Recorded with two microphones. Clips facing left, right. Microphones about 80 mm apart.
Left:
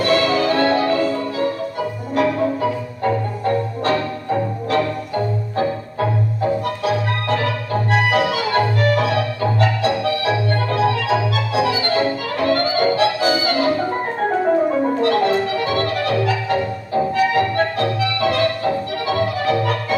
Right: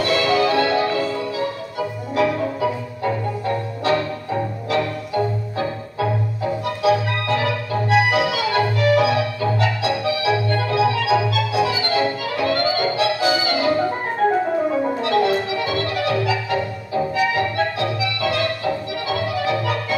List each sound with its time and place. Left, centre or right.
0.0 s music: left
7.9 s organ: left
15.0 s music: left